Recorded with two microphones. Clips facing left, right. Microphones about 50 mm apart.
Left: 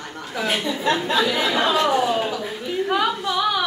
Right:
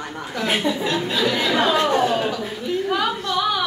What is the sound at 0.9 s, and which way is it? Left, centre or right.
Speech, left.